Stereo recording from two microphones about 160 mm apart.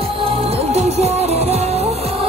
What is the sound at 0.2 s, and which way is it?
Music, 35° right (ahead or behind).